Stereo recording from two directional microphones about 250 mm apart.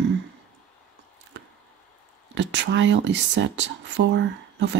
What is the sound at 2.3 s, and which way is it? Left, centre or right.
Speech, right.